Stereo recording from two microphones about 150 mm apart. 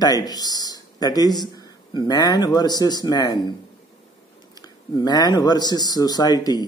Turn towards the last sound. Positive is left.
turn(degrees=25)  # may be behind; listen again after turning